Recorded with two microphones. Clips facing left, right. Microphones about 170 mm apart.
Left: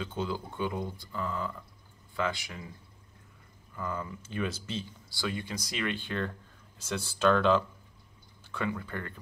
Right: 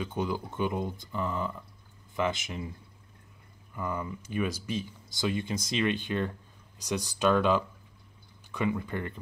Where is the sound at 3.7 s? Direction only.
15° right (ahead or behind).